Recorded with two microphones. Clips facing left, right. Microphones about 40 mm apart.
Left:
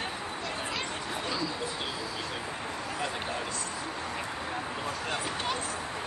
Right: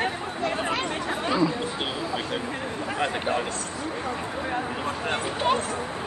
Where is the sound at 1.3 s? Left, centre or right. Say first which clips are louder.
Right 11 dB; right.